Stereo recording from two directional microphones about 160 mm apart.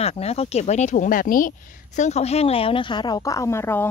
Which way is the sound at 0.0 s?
40° left (ahead or behind).